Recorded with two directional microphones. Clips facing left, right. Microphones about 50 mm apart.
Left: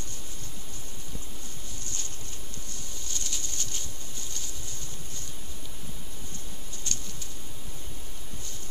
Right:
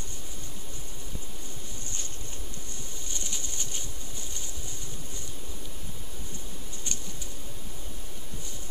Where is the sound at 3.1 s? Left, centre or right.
Centre.